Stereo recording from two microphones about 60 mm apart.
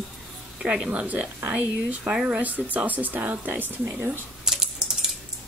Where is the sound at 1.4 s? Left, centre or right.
Right.